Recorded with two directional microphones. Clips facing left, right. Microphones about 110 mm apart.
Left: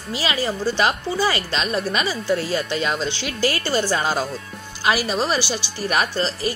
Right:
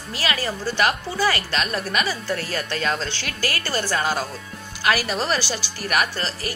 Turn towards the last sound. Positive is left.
turn(degrees=25)  # may be behind; listen again after turning